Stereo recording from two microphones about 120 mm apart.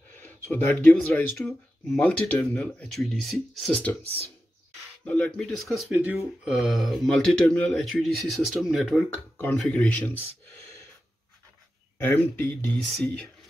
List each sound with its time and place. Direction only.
0.5 s a man's voice: 20° left (ahead or behind); by 3.8 s centre (ahead or behind)
5.0 s a man's voice: 10° left (ahead or behind)
5.9 s speech: 15° right (ahead or behind)
6.5 s a man's voice: centre (ahead or behind)
9.6 s speech: 10° left (ahead or behind)
10.4 s gasp: 25° left (ahead or behind)
12.0 s speech: 20° left (ahead or behind)
12.9 s a man's voice: 5° left (ahead or behind)